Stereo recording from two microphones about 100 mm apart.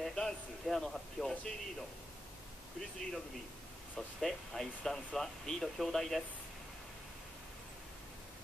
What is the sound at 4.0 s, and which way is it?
Speech, centre (ahead or behind).